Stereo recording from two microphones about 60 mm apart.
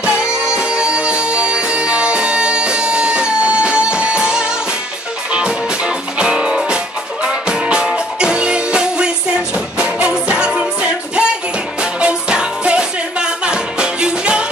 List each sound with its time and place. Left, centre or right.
0.0 s music: centre